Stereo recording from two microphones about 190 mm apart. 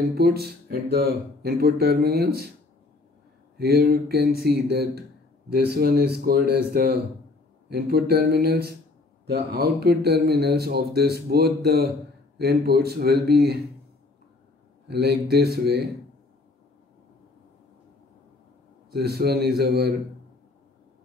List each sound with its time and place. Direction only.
0.1 s speech: 55° right (ahead or behind)
3.5 s speech: 55° right (ahead or behind)
14.9 s speech: 60° right (ahead or behind)
18.9 s speech: 55° right (ahead or behind)